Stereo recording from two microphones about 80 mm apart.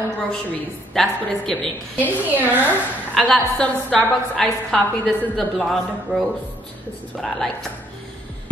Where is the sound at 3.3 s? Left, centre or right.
Centre.